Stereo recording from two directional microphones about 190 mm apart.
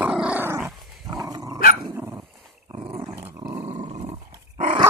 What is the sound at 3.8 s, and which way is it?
Dog, 35° right (ahead or behind).